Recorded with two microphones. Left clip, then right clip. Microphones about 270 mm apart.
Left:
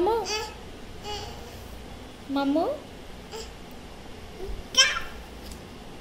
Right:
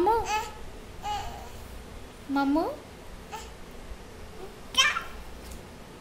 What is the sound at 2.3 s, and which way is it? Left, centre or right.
Speech, right.